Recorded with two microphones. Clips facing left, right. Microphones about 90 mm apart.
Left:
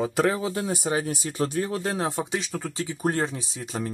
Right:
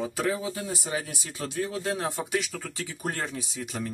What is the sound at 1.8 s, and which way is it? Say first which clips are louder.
Speech: left 3 dB; 30° left (ahead or behind).